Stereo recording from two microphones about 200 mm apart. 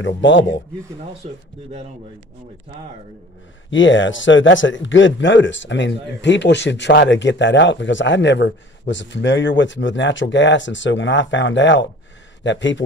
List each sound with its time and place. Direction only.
0.0 s speech: 70° left (ahead or behind)
1.2 s speech: 30° right (ahead or behind)
3.7 s a man's voice: 70° left (ahead or behind)